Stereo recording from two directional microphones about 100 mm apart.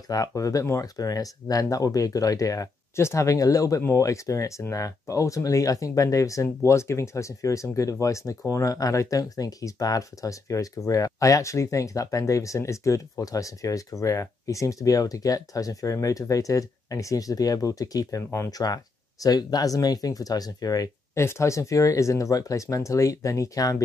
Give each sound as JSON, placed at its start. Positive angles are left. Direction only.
{"t": 0.1, "sound": "speech", "side_deg": 35}